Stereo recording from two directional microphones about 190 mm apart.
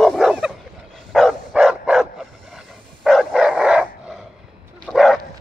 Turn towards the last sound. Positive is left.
turn(degrees=0)  # may be behind; listen again after turning